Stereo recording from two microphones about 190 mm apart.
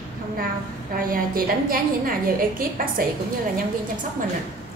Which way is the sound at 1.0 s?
50° right (ahead or behind).